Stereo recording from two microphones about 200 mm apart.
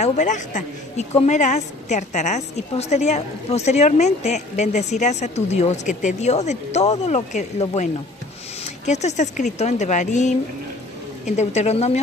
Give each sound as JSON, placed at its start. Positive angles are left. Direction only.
{"t": 0.0, "sound": "a woman's voice", "side_deg": 35}